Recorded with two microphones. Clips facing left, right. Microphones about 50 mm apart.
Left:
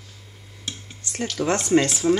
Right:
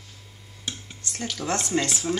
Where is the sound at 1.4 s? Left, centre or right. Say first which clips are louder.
Left 7 dB; centre.